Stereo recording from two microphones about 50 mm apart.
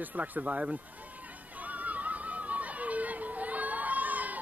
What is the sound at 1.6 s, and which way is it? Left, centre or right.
Chatter, right.